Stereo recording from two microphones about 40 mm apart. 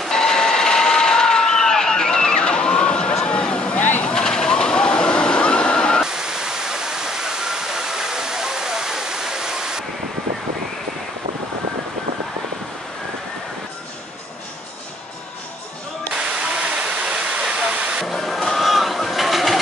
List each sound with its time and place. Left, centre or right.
0.1 s a sound: centre
3.3 s vehicle: left
6.0 s waterfall: centre
16.1 s waterfall: right
17.6 s vehicle: centre
18.0 s a sound: centre